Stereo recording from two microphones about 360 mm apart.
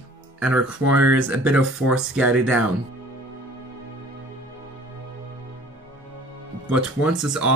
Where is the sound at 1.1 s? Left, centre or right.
Centre.